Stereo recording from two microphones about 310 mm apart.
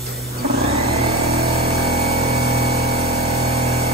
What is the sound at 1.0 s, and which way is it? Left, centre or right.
Vehicle, centre.